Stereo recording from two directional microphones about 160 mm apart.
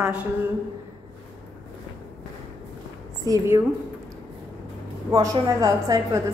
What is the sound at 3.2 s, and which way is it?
Speech, 20° right (ahead or behind).